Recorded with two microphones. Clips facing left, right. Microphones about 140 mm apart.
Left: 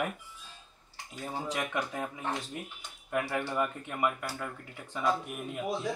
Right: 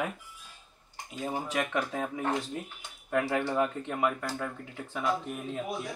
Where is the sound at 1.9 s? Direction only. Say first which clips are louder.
Right 4 dB; 20° right (ahead or behind).